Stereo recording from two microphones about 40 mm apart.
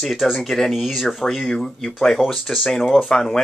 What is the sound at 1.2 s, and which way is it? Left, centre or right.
Speech, centre.